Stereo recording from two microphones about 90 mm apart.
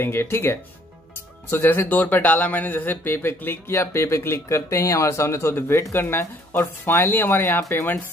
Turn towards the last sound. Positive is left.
turn(degrees=25)  # may be behind; listen again after turning